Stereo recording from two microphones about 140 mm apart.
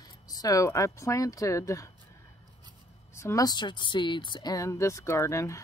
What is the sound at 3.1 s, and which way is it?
Speech, 20° left (ahead or behind).